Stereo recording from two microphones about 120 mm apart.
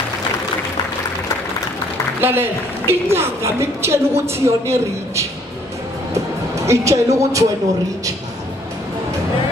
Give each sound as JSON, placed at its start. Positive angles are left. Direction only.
{"t": 2.2, "sound": "a man's voice", "side_deg": -15}